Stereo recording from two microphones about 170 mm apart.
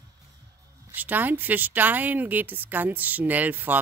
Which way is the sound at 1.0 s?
10° right (ahead or behind).